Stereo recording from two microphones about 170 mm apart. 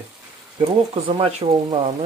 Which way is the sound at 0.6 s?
35° right (ahead or behind).